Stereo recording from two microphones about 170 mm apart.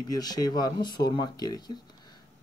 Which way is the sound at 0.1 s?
20° left (ahead or behind).